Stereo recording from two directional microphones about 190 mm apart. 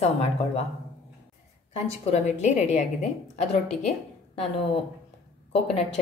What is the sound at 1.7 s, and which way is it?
A woman's voice, 35° left (ahead or behind).